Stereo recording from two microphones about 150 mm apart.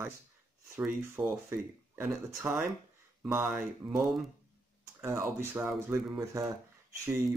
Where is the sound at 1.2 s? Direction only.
15° right (ahead or behind).